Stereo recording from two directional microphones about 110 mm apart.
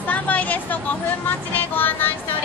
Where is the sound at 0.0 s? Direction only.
15° left (ahead or behind).